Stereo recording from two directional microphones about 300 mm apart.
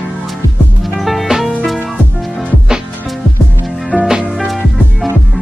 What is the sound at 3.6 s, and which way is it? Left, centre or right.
Music, centre.